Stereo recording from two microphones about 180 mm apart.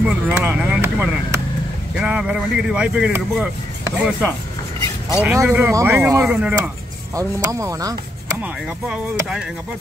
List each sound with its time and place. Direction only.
0.0 s speech: 5° right (ahead or behind)
7.2 s speech: 15° right (ahead or behind)
8.4 s speech: 5° right (ahead or behind)